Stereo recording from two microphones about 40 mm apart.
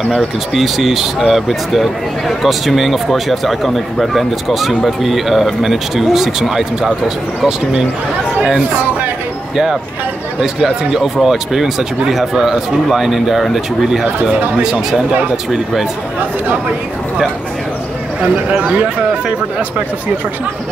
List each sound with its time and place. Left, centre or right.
0.6 s speech: centre
10.4 s speech: centre
14.6 s speech: centre
18.3 s speech: right